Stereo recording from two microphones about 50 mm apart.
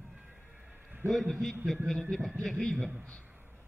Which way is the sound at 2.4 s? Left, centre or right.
Centre.